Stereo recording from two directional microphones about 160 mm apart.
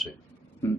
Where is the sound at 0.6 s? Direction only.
15° left (ahead or behind).